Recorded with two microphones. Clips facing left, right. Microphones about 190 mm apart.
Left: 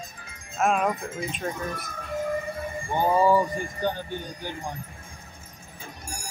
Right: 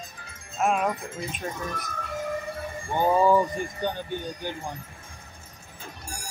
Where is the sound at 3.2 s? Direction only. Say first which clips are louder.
Even; 5° left (ahead or behind).